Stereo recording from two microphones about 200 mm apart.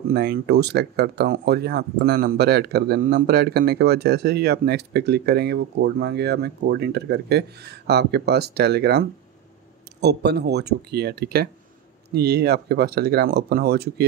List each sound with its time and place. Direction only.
0.1 s speech: 55° right (ahead or behind)